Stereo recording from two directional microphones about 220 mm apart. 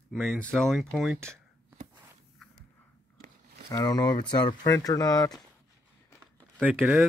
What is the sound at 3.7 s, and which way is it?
Speech, 15° left (ahead or behind).